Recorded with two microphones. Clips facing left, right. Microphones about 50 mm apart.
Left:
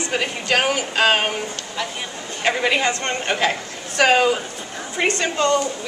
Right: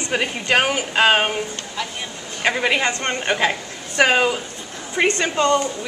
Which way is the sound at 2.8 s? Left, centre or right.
Right.